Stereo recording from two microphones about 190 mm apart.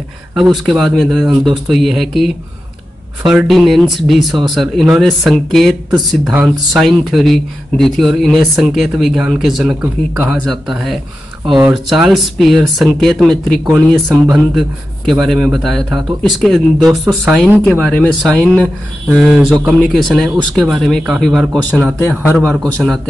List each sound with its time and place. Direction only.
0.7 s speech: centre (ahead or behind)
14.1 s speech: 20° right (ahead or behind)
14.5 s a man's voice: centre (ahead or behind)
17.4 s speech: 5° left (ahead or behind)
19.0 s speech: 5° right (ahead or behind)
21.8 s a man's voice: 10° right (ahead or behind)